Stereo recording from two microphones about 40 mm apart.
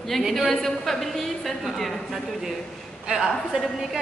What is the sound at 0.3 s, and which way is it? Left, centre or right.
Speech, centre.